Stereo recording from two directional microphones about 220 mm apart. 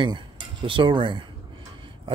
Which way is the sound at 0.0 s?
20° right (ahead or behind).